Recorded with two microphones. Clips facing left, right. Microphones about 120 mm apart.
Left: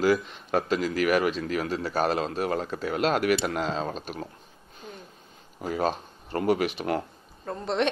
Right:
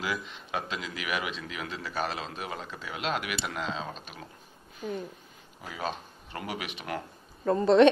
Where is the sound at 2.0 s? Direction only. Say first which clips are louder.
Left 9 dB; 50° left (ahead or behind).